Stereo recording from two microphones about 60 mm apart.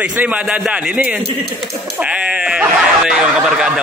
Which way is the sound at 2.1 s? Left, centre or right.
Centre.